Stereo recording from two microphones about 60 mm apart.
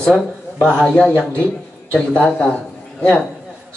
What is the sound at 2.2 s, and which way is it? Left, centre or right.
Speech, centre.